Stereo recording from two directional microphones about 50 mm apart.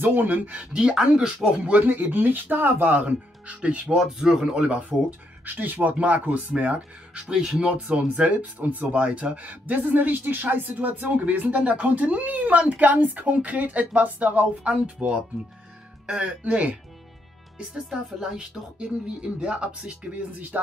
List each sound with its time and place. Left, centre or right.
0.0 s speech: right
0.7 s speech: centre
1.8 s speech: right
3.4 s speech: right
4.0 s speech: centre
4.6 s speech: right
5.4 s speech: right
7.3 s speech: centre
7.6 s speech: right
16.1 s speech: centre
17.8 s speech: centre; by 20.4 s right